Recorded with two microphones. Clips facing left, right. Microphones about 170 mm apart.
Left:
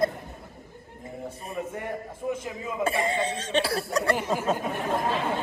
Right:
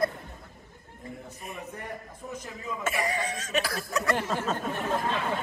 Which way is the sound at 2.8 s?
25° left (ahead or behind).